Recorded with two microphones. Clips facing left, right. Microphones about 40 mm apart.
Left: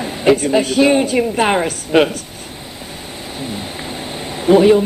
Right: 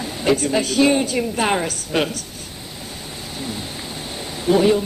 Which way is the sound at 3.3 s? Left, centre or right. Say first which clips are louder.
Left 3 dB; left.